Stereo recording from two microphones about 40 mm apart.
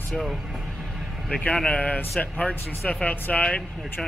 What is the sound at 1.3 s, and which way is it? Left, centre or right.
Speech, left.